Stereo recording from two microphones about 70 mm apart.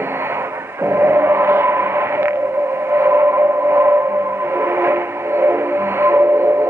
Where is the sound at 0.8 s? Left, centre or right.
Right.